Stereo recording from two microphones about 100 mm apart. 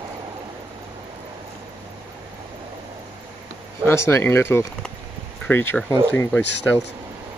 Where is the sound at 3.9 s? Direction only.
30° left (ahead or behind).